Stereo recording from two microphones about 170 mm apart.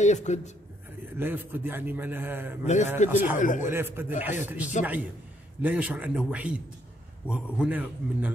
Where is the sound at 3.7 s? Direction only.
15° right (ahead or behind).